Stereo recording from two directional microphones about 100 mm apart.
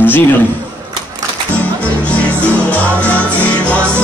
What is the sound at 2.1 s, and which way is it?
Music, 15° left (ahead or behind).